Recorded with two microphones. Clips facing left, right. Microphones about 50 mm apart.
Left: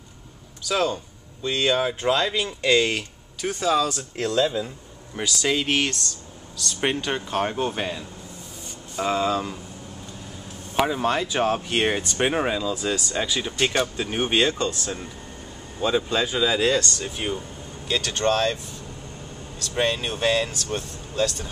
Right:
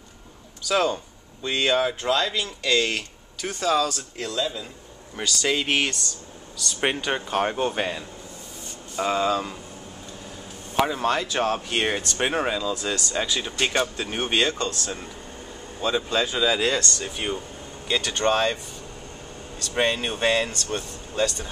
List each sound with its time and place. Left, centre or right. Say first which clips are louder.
0.7 s speech: right 1 dB; centre
2.0 s speech: left 2 dB; centre
4.2 s speech: left 6 dB; left
5.1 s speech: left 1 dB; centre
10.8 s speech: even; centre
19.8 s speech: even; centre